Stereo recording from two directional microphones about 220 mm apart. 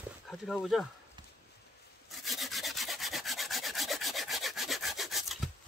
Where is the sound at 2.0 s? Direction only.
Centre (ahead or behind).